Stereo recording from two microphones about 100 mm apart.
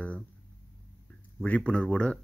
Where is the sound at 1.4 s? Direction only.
10° left (ahead or behind).